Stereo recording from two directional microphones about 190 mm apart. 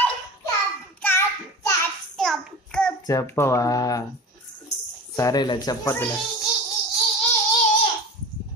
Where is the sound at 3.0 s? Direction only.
15° left (ahead or behind).